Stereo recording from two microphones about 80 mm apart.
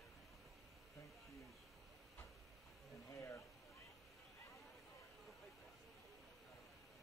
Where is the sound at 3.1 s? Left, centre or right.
Left.